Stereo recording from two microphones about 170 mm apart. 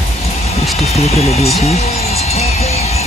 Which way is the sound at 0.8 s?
35° left (ahead or behind).